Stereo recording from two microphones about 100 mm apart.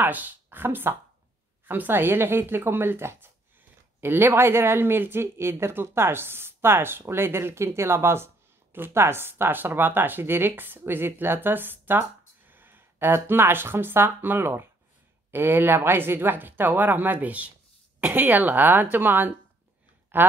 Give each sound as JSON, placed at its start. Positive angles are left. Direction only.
{"t": 0.0, "sound": "speech", "side_deg": -20}